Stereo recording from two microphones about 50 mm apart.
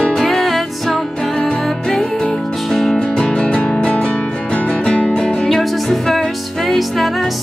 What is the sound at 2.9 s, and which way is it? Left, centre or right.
Music, centre.